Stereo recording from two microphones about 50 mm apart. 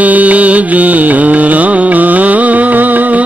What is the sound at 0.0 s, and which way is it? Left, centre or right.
Music, right.